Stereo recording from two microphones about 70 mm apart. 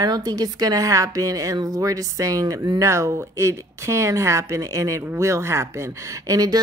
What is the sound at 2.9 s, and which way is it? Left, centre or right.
Speech, right.